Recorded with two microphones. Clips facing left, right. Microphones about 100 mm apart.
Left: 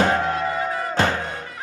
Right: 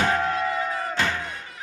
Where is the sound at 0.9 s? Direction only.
40° left (ahead or behind).